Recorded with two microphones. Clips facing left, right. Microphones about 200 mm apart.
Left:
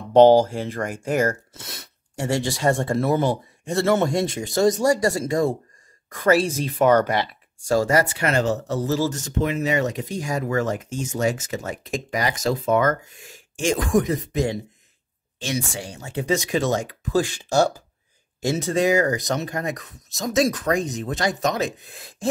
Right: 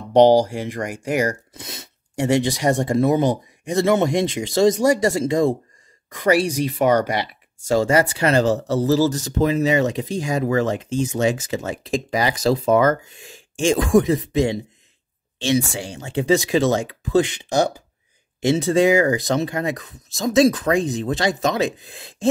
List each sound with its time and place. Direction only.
0.1 s speech: 15° right (ahead or behind)